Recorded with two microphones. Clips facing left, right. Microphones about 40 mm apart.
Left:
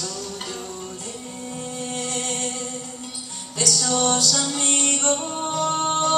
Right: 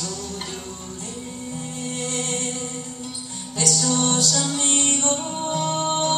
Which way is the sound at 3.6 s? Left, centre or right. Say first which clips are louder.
Even; right.